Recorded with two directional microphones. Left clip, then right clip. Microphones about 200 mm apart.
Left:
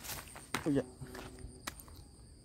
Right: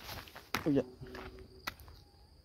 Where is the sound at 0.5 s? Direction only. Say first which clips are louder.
Right 2 dB; 20° right (ahead or behind).